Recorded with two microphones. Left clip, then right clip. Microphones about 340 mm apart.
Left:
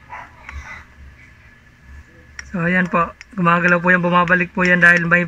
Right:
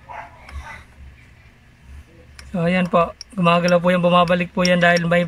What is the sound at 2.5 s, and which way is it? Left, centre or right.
Speech, right.